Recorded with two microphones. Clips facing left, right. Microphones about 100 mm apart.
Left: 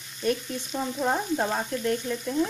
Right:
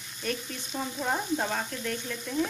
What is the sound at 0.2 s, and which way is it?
Sizzle, 20° left (ahead or behind).